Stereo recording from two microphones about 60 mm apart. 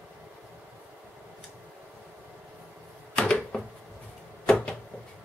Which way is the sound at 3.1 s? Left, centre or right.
Centre.